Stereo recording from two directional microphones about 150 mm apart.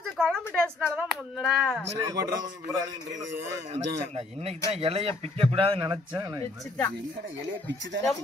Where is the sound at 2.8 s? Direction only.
25° right (ahead or behind).